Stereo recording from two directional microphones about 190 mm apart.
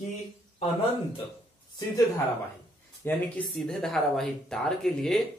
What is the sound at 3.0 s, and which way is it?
Speech, 5° left (ahead or behind).